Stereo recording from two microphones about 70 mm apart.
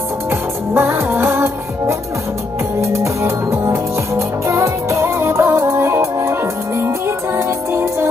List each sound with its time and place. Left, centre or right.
0.3 s music: right
7.3 s music: right